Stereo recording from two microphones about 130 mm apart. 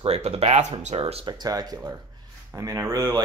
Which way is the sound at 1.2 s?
30° right (ahead or behind).